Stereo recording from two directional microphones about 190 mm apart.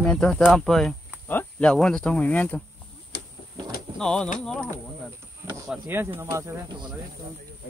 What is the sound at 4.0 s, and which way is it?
Speech, 5° left (ahead or behind).